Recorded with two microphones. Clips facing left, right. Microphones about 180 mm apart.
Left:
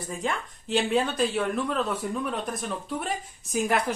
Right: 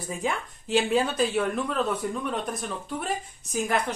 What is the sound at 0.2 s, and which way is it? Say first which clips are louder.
Speech: right 1 dB; centre (ahead or behind).